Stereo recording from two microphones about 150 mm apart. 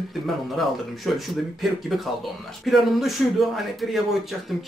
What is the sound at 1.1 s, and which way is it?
Speech, centre (ahead or behind).